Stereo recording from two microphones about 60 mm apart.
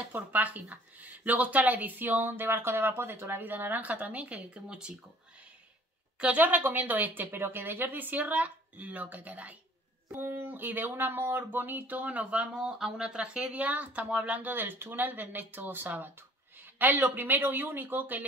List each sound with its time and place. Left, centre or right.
0.1 s speech: right; by 4.9 s centre
6.1 s speech: right
10.1 s speech: right
12.5 s speech: centre; by 18.2 s right